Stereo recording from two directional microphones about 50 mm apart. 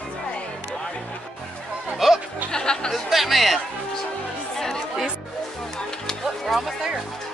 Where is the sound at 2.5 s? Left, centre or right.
Centre.